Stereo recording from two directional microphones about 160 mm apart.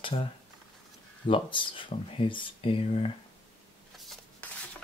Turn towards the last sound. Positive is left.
turn(degrees=35)  # may be behind; listen again after turning